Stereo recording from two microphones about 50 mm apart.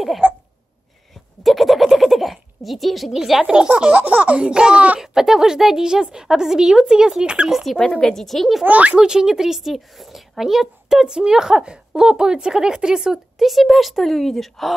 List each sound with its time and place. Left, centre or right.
0.2 s a sound: right
1.4 s a sound: centre
3.7 s speech: right
5.0 s a woman's voice: centre
8.0 s a woman's voice: centre
8.6 s a child's voice: right
8.9 s a woman's voice: centre